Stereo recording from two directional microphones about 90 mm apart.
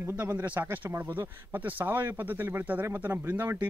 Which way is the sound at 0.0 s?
20° right (ahead or behind).